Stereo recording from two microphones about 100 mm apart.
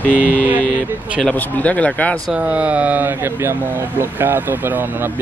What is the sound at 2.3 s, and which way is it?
Speech, 10° right (ahead or behind).